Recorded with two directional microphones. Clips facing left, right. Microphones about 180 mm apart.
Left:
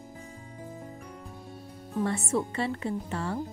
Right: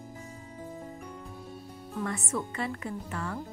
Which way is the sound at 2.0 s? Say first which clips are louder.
Left 5 dB; 30° left (ahead or behind).